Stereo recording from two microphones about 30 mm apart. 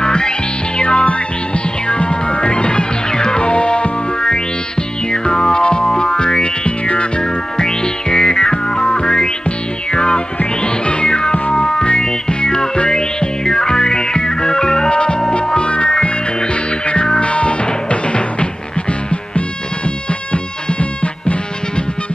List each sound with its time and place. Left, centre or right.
0.0 s music: left
7.5 s music: left
14.9 s music: left
17.2 s music: left